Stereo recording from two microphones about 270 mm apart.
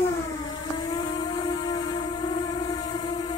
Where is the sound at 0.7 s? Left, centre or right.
Centre.